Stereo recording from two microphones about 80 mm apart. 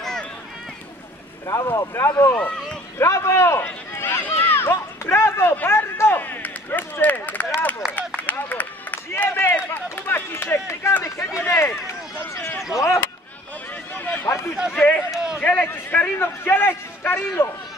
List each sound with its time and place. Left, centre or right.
1.5 s speech: left
3.6 s run: left
10.0 s a sound: left
11.1 s speech: left
13.9 s a sound: left
14.8 s speech: centre
15.4 s a man's voice: left